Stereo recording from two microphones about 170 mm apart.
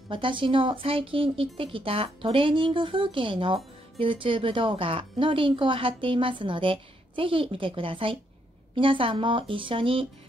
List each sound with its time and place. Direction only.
0.1 s speech: 30° right (ahead or behind)